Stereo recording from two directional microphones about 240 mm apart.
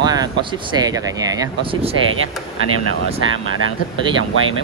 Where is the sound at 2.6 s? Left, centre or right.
Right.